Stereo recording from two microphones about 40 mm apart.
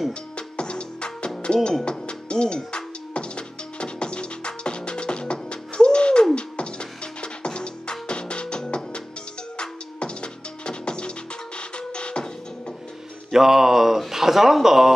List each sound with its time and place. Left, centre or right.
0.4 s music: left
13.3 s speech: centre